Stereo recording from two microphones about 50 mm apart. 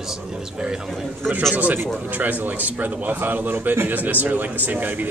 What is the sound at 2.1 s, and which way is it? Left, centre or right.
A man's voice, right.